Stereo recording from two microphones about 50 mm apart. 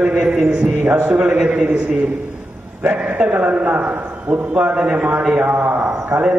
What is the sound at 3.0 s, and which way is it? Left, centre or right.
A man's voice, right.